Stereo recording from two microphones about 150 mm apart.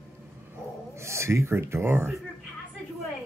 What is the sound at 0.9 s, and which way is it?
Speech, 20° right (ahead or behind).